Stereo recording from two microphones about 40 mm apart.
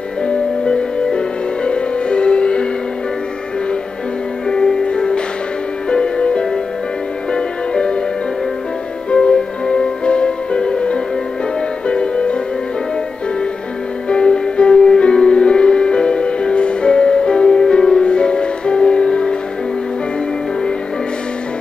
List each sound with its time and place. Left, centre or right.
0.7 s music: left
4.5 s music: centre
9.1 s music: left
14.0 s music: left